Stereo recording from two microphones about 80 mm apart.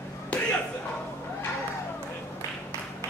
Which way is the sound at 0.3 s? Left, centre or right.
Centre.